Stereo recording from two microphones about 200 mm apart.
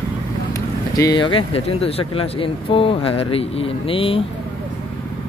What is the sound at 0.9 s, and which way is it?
Speech, 20° left (ahead or behind).